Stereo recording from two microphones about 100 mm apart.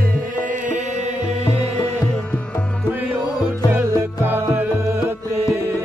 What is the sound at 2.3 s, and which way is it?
Music, 15° left (ahead or behind).